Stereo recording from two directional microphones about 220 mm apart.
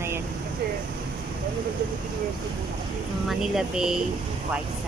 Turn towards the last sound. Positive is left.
turn(degrees=-5)  # may be behind; listen again after turning